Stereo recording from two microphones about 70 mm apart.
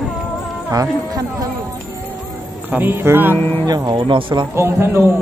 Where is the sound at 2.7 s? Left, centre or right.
Right.